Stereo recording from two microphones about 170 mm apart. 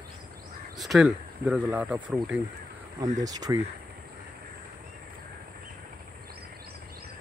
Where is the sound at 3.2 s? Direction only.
20° right (ahead or behind).